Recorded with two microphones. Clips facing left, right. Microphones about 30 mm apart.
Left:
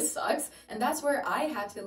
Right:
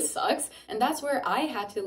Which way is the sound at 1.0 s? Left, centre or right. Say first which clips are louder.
Right 1 dB; right.